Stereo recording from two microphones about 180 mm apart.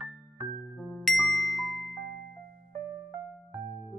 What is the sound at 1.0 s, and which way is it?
Ding, centre (ahead or behind).